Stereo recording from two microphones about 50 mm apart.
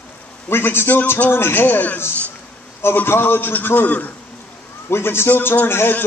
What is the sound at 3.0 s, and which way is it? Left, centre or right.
A man's voice, left.